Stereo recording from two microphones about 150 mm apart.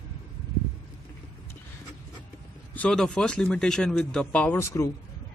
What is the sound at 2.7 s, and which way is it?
Speech, 5° left (ahead or behind).